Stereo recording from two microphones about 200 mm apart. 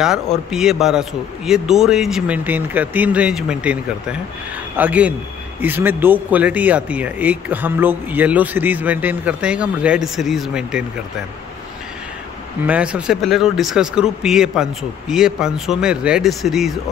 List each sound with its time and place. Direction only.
0.0 s a man's voice: 5° right (ahead or behind)
12.6 s a man's voice: 5° right (ahead or behind)